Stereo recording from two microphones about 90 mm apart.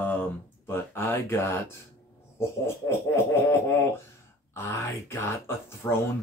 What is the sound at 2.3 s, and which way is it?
Speech, 30° left (ahead or behind).